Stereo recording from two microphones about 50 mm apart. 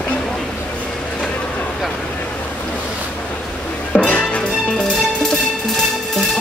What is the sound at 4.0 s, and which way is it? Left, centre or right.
Music, left.